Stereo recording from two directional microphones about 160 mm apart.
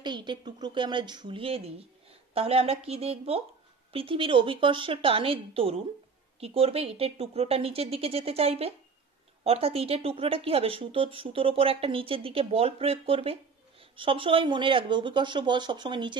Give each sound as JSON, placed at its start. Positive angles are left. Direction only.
{"t": 0.0, "sound": "speech", "side_deg": -30}